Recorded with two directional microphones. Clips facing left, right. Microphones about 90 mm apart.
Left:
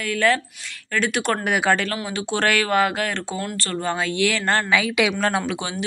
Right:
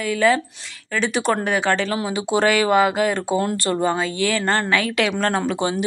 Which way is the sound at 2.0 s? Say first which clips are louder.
Right 4 dB; 10° right (ahead or behind).